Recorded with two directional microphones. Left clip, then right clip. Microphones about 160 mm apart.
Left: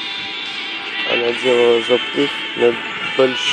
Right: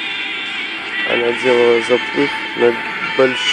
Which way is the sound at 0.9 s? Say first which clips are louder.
Right 2 dB; 50° left (ahead or behind).